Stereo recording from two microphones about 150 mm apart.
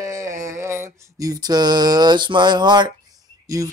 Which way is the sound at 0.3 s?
60° right (ahead or behind).